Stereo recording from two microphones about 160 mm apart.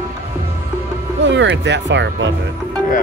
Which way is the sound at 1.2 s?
90° right.